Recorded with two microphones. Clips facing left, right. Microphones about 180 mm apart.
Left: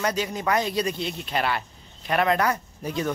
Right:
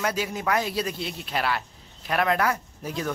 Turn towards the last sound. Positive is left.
turn(degrees=0)  # may be behind; listen again after turning